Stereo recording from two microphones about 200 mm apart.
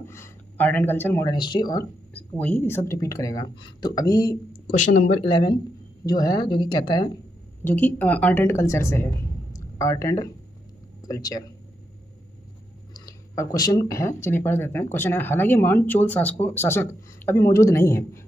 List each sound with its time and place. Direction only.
0.0 s speech: 10° left (ahead or behind)
2.1 s speech: 10° left (ahead or behind)
4.7 s speech: 40° left (ahead or behind)
5.3 s speech: 20° left (ahead or behind)
7.6 s speech: 10° left (ahead or behind)
12.9 s speech: 15° left (ahead or behind)